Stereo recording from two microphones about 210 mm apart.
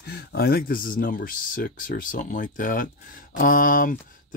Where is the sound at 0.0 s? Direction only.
50° left (ahead or behind).